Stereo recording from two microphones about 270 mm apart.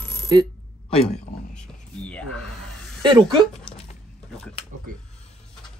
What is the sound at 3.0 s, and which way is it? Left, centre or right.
Speech, centre.